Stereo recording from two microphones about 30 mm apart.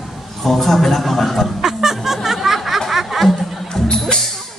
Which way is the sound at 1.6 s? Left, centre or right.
Centre.